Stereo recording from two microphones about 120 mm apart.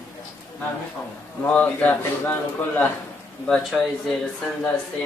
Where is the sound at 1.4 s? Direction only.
10° left (ahead or behind).